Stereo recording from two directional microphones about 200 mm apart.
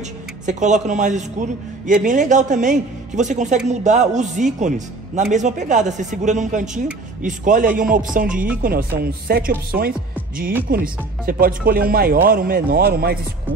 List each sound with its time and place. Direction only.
0.5 s speech: 35° right (ahead or behind)